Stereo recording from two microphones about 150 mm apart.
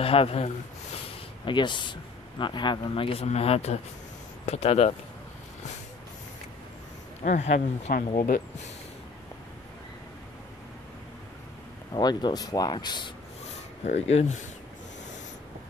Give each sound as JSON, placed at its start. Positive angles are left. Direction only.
{"t": 0.0, "sound": "speech", "side_deg": 40}
{"t": 7.2, "sound": "speech", "side_deg": 50}
{"t": 11.9, "sound": "speech", "side_deg": 30}
{"t": 13.8, "sound": "speech", "side_deg": 45}